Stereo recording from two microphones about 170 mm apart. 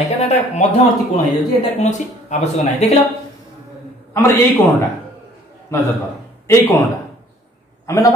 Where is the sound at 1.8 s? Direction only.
45° left (ahead or behind).